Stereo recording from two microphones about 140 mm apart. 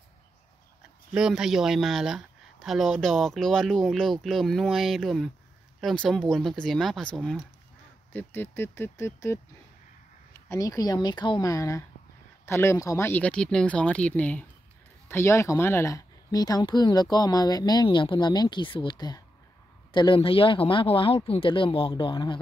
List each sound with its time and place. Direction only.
1.1 s speech: 5° right (ahead or behind)
8.1 s speech: 15° left (ahead or behind)
10.5 s speech: 25° left (ahead or behind)